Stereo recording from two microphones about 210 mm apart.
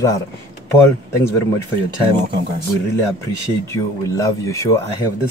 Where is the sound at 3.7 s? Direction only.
15° left (ahead or behind).